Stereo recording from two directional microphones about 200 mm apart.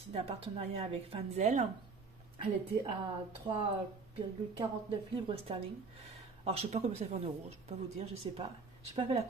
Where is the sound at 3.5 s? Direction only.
25° right (ahead or behind).